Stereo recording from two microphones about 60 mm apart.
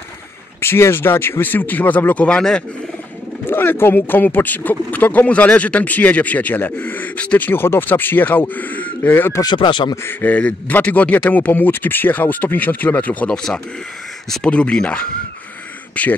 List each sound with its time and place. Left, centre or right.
0.6 s speech: left; by 2.6 s centre
3.4 s speech: left
14.5 s speech: centre